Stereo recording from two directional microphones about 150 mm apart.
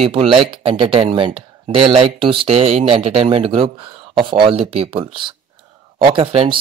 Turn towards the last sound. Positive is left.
turn(degrees=-40)  # may be behind; listen again after turning